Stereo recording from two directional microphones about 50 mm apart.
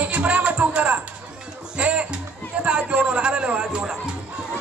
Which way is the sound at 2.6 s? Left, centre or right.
Right.